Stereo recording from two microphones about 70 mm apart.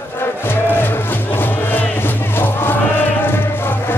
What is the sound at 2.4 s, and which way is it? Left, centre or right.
Music, left.